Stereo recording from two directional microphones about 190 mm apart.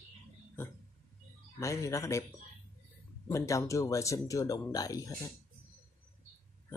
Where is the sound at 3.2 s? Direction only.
15° left (ahead or behind).